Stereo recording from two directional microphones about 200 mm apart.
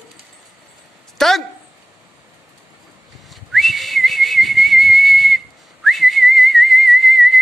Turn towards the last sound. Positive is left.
turn(degrees=0)  # may be behind; listen again after turning